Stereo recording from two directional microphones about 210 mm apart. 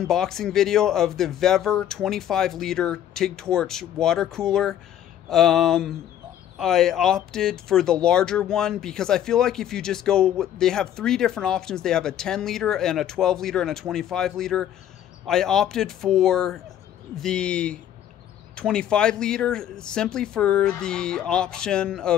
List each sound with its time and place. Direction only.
0.0 s speech: centre (ahead or behind)